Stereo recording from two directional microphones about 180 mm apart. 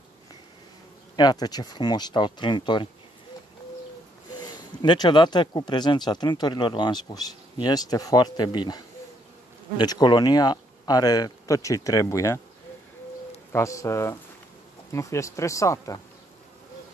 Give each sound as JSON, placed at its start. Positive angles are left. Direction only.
{"t": 1.1, "sound": "speech", "side_deg": 20}
{"t": 4.4, "sound": "speech", "side_deg": 25}
{"t": 13.5, "sound": "speech", "side_deg": 15}